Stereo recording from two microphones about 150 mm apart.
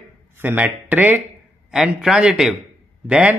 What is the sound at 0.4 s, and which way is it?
A man's voice, 10° right (ahead or behind).